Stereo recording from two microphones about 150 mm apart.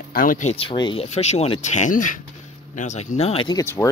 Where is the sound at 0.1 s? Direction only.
65° left (ahead or behind).